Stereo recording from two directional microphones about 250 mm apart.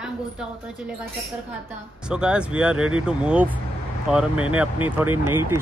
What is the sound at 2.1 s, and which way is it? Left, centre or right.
A woman's voice, centre.